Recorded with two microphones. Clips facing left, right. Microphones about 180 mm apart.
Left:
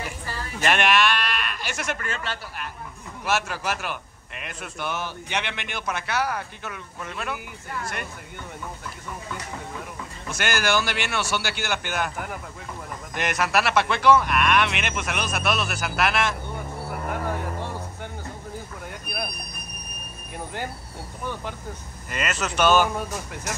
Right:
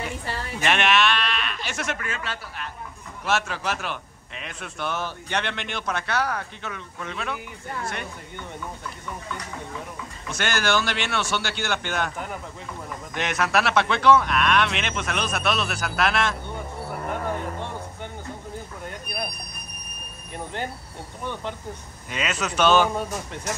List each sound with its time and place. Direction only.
0.6 s a man's voice: centre (ahead or behind)
10.3 s a man's voice: 5° left (ahead or behind)
17.1 s music: 5° left (ahead or behind)
20.3 s speech: 5° left (ahead or behind)
22.1 s a man's voice: centre (ahead or behind)